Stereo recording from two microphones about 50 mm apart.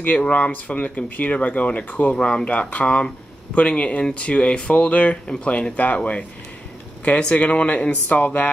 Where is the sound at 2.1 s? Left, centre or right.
Centre.